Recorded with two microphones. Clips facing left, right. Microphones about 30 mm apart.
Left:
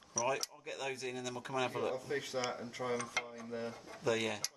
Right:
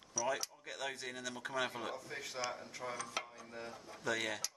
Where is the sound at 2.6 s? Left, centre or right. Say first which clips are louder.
Left 4 dB; left.